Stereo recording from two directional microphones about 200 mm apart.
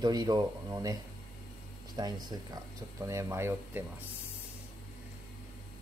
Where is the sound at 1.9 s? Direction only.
20° right (ahead or behind).